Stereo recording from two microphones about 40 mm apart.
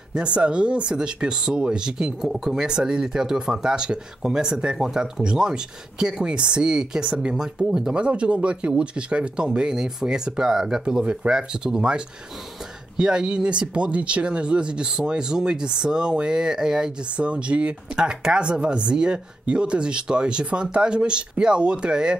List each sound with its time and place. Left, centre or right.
0.1 s speech: right
2.2 s speech: centre
8.0 s speech: right
17.2 s speech: right